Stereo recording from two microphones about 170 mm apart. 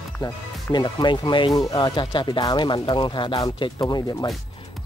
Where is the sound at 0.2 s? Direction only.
25° left (ahead or behind).